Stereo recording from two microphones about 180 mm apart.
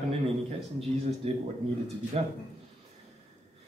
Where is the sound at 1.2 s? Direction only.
35° right (ahead or behind).